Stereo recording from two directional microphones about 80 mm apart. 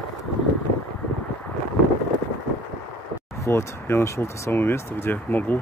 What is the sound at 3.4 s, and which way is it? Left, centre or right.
Speech, left.